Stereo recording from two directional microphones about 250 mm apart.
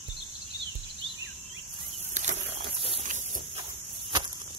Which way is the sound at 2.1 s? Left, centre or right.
Right.